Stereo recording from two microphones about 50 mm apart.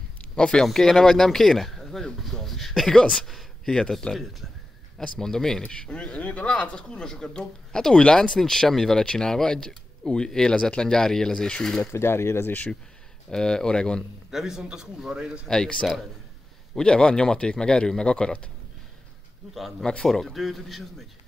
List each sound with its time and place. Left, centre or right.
0.4 s speech: centre
0.7 s speech: centre
3.3 s a sound: centre
3.7 s speech: centre
5.6 s speech: left
11.8 s speech: left
13.3 s speech: centre
14.3 s a man's voice: centre
15.4 s speech: centre
19.8 s speech: centre